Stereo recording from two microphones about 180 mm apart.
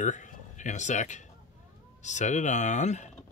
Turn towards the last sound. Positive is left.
turn(degrees=40)  # may be behind; listen again after turning